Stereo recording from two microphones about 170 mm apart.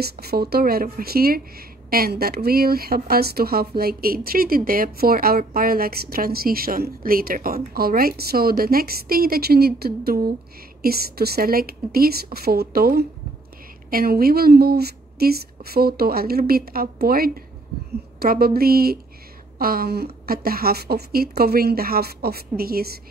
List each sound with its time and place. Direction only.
0.0 s a woman's voice: 65° right (ahead or behind)